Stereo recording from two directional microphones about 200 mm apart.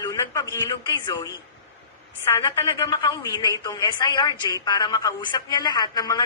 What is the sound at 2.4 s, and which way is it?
A woman's voice, 15° left (ahead or behind).